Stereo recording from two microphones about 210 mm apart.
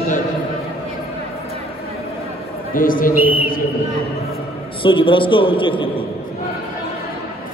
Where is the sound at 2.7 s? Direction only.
40° left (ahead or behind).